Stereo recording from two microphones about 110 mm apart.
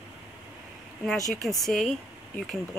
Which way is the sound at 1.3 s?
Centre (ahead or behind).